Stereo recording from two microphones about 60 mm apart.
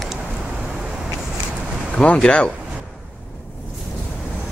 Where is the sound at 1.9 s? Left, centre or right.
Centre.